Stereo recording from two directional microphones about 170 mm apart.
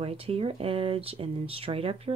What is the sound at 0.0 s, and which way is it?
Speech, 35° right (ahead or behind).